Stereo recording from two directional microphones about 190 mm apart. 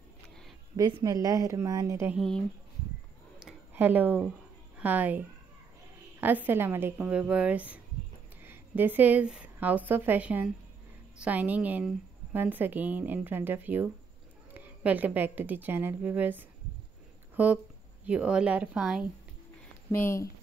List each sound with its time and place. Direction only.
0.7 s a woman's voice: 20° right (ahead or behind)
2.1 s speech: 5° left (ahead or behind)
3.3 s a sound: 5° right (ahead or behind)
4.7 s a woman's voice: 10° right (ahead or behind)
6.2 s a woman's voice: 10° right (ahead or behind)
19.9 s speech: 15° left (ahead or behind)